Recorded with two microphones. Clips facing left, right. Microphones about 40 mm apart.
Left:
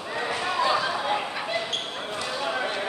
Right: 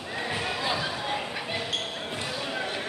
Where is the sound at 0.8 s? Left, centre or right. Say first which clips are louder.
Left 4 dB; centre.